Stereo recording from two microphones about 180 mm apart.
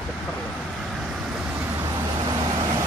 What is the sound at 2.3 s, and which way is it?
Vehicle, 20° right (ahead or behind).